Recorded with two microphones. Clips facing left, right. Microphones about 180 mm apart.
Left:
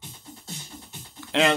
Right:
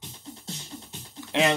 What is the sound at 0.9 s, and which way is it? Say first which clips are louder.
Music: left 3 dB; 20° right (ahead or behind).